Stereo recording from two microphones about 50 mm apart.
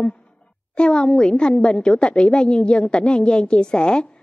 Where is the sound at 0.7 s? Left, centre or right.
Centre.